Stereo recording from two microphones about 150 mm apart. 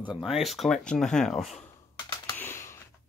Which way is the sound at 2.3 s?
15° left (ahead or behind).